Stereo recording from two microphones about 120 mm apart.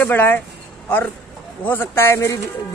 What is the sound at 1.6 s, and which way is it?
Speech, 20° left (ahead or behind).